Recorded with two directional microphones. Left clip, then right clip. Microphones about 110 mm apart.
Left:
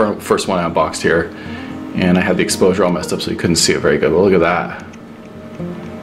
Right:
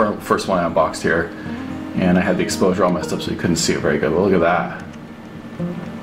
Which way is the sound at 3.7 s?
50° left (ahead or behind).